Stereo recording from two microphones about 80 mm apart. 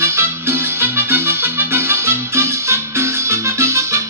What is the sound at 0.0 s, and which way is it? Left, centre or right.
Music, right.